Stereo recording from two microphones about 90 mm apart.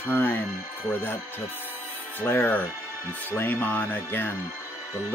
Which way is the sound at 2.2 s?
25° left (ahead or behind).